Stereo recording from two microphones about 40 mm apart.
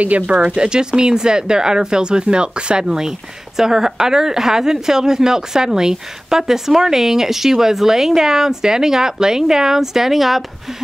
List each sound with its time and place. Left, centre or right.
0.0 s speech: right
0.7 s speech: centre